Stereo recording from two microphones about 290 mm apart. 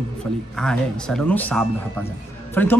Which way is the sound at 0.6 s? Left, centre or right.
Centre.